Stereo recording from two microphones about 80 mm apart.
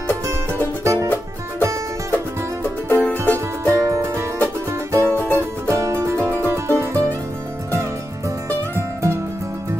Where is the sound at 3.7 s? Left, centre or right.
Right.